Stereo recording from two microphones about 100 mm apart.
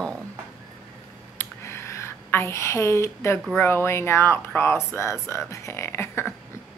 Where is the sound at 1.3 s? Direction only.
25° left (ahead or behind).